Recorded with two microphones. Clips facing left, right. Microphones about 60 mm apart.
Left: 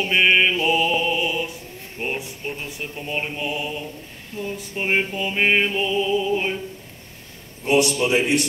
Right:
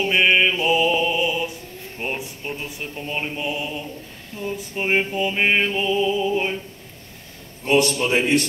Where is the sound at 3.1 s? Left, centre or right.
Centre.